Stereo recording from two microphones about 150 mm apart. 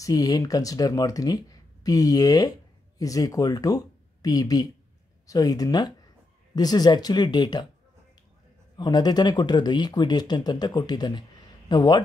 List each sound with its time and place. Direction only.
0.0 s speech: 25° left (ahead or behind)
8.7 s speech: 25° left (ahead or behind)